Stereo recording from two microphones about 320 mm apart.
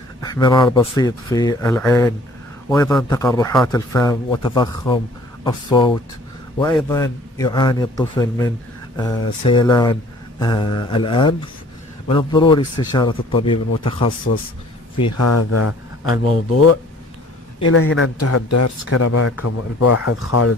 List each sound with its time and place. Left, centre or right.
0.2 s a man's voice: centre
15.0 s speech: left
17.6 s speech: left